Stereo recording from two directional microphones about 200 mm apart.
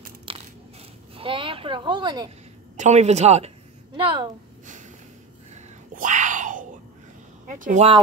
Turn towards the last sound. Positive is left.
turn(degrees=-40)  # may be behind; listen again after turning